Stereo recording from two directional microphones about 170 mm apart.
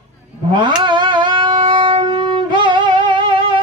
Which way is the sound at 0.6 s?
30° right (ahead or behind).